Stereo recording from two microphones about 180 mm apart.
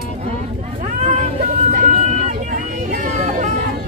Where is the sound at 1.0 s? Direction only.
40° right (ahead or behind).